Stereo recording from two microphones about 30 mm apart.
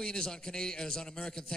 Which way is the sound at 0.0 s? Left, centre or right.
Left.